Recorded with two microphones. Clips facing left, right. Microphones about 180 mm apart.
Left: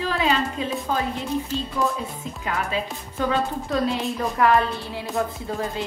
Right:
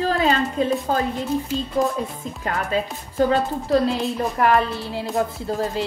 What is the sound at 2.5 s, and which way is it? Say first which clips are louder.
A woman's voice: right 3 dB; 45° right (ahead or behind).